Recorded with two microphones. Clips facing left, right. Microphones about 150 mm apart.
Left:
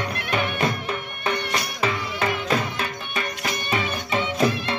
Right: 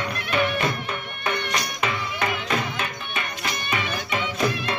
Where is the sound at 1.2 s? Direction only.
30° left (ahead or behind).